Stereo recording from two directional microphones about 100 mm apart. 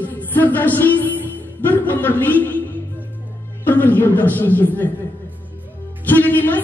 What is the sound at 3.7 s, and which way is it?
A man's voice, 20° left (ahead or behind).